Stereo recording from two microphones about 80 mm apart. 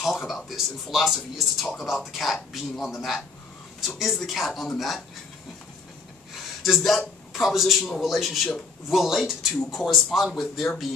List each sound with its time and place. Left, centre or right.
0.0 s speech: centre
6.6 s speech: centre